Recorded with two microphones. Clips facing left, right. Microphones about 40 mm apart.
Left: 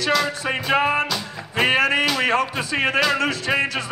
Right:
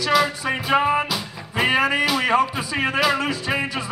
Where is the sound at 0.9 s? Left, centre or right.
Centre.